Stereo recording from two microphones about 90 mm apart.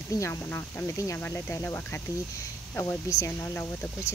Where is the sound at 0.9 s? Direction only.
35° left (ahead or behind).